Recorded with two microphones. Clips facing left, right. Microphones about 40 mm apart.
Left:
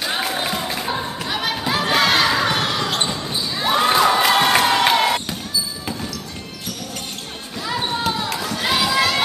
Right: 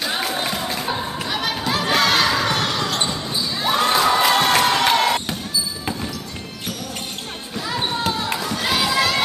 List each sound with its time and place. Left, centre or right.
0.0 s music: centre
2.9 s basketball bounce: centre
3.5 s crowd: centre
8.0 s a sound: centre